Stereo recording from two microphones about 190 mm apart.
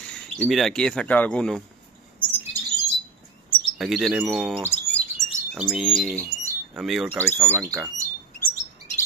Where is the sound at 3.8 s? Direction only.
Centre (ahead or behind).